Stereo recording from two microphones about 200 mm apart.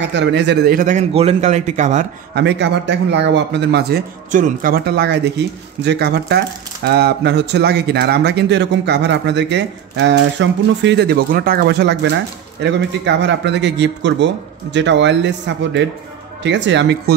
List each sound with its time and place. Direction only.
0.0 s speech: 65° right (ahead or behind); by 2.0 s 35° right (ahead or behind)
2.3 s speech: 60° right (ahead or behind)